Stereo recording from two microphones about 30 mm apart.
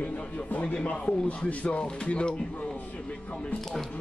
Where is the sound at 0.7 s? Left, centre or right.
Left.